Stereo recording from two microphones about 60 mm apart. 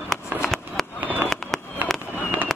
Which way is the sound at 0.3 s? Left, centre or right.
Right.